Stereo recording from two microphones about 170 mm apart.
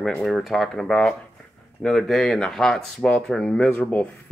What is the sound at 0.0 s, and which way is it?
A man's voice, centre (ahead or behind).